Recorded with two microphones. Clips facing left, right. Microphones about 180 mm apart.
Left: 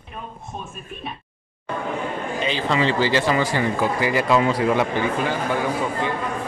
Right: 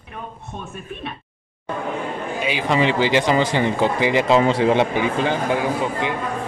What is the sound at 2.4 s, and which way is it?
Speech, 10° right (ahead or behind).